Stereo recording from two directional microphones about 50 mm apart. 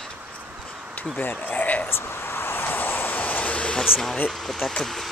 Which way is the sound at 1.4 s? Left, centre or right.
Left.